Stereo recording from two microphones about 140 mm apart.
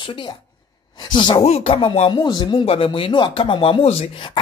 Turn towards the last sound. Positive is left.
turn(degrees=45)  # may be behind; listen again after turning